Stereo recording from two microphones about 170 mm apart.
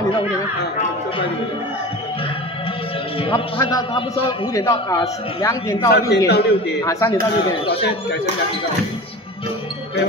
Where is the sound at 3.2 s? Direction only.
30° left (ahead or behind).